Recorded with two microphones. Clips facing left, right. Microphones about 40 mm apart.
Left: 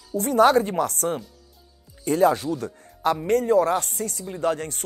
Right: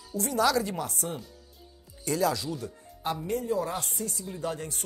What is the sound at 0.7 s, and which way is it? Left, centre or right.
Speech, left.